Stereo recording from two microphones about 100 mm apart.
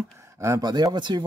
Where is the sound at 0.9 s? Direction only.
50° right (ahead or behind).